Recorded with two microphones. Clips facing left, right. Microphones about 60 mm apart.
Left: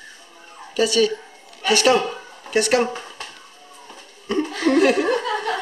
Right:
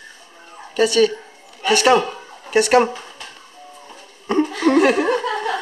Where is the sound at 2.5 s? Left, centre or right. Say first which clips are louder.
Right 4 dB; centre.